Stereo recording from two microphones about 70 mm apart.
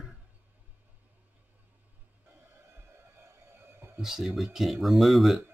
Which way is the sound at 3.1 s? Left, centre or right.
Right.